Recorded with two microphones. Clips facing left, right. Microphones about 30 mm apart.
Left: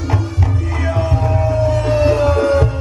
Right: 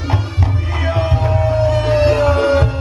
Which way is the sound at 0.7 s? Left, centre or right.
Right.